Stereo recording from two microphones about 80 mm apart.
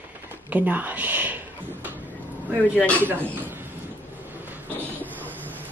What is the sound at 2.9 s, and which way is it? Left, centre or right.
Speech, right.